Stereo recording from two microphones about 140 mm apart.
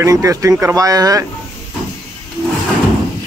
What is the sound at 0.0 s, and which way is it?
Speech, 25° right (ahead or behind).